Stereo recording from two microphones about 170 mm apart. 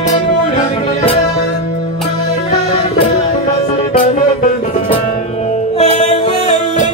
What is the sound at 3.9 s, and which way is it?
Music, 50° left (ahead or behind).